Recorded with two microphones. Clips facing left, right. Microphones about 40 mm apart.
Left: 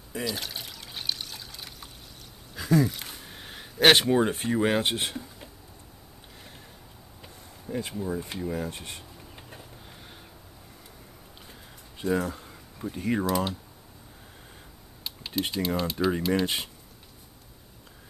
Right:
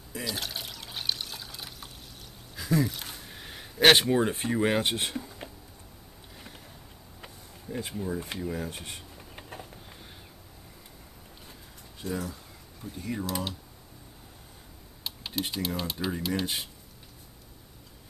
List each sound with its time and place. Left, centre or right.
0.1 s water: centre
2.8 s speech: centre
3.2 s a sound: centre
4.5 s speech: centre
7.6 s speech: centre
9.3 s a sound: centre
12.0 s a sound: left
12.9 s speech: left
13.3 s speech: centre
15.0 s speech: centre